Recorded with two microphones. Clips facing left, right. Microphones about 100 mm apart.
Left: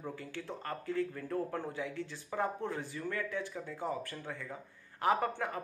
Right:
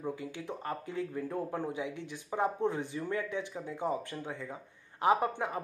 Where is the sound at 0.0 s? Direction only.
15° right (ahead or behind).